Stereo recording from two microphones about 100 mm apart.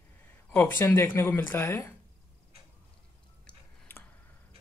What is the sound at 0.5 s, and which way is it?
Speech, 20° left (ahead or behind).